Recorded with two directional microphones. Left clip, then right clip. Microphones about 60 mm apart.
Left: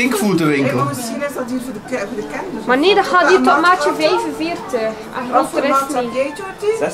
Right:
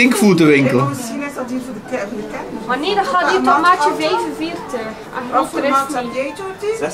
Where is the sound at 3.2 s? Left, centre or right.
Centre.